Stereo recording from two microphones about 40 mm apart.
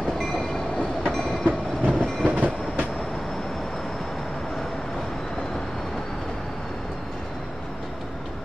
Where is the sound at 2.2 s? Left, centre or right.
Right.